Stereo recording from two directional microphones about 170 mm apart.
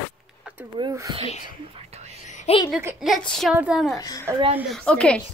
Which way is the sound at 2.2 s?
45° left (ahead or behind).